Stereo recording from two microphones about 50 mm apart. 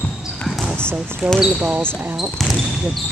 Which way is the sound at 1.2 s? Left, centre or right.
Right.